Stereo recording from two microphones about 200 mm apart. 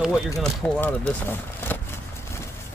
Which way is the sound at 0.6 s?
10° left (ahead or behind).